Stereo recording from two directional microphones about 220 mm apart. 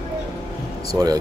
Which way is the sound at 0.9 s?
15° right (ahead or behind).